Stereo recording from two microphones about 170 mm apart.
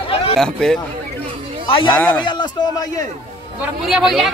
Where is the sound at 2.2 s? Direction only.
25° left (ahead or behind).